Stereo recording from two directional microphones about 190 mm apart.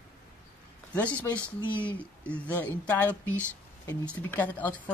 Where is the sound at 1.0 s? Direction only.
5° left (ahead or behind).